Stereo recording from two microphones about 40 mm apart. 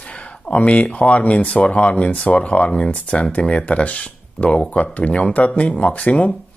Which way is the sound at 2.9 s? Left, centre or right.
Left.